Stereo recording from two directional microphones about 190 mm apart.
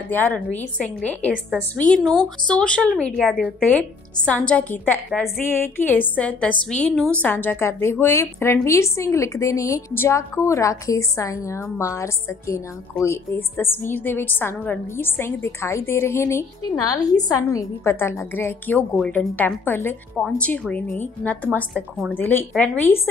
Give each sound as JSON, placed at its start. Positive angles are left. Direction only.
{"t": 0.1, "sound": "a woman's voice", "side_deg": 10}